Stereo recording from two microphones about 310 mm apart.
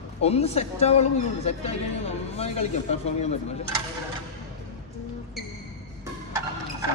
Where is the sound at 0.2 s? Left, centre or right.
Centre.